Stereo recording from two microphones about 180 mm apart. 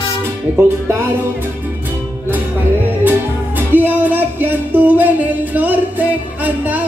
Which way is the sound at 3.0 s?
10° right (ahead or behind).